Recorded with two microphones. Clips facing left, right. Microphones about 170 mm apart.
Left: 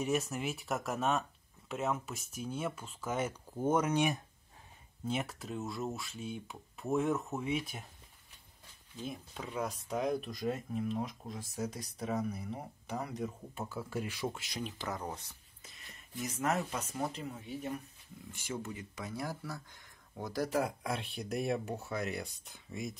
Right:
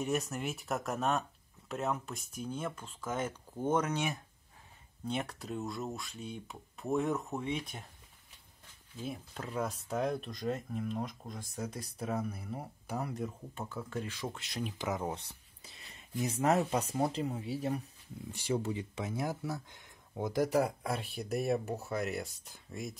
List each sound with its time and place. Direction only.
0.0 s speech: centre (ahead or behind)
5.0 s speech: centre (ahead or behind)
8.9 s speech: 5° right (ahead or behind)
15.1 s speech: 30° right (ahead or behind); by 22.9 s centre (ahead or behind)